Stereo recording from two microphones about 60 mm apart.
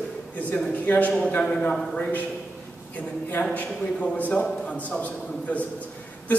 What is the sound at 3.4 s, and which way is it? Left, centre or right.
Speech, left.